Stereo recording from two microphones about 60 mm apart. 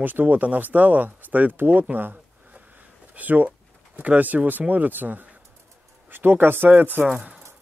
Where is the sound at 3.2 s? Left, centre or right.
Right.